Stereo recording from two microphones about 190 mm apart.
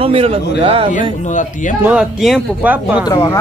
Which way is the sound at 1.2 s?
40° left (ahead or behind).